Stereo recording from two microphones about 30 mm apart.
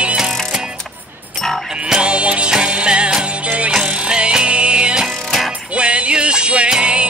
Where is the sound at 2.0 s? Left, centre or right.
Right.